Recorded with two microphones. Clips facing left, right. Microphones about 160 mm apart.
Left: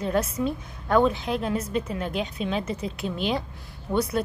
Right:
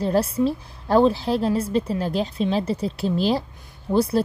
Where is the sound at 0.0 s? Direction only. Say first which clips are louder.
Right 5 dB; 30° right (ahead or behind).